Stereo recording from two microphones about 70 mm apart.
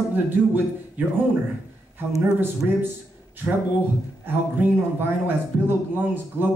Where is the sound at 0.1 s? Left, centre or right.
Right.